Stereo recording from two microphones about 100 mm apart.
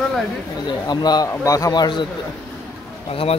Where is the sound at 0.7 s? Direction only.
45° left (ahead or behind).